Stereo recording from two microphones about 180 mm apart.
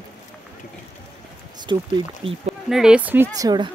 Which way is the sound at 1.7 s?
30° right (ahead or behind).